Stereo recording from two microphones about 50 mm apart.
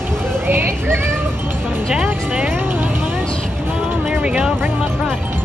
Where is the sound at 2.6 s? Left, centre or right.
Right.